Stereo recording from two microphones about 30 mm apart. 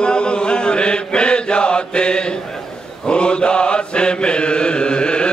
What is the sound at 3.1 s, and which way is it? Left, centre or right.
Mantra, left.